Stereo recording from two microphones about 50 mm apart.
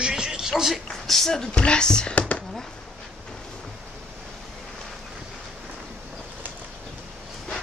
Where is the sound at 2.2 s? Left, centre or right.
Left.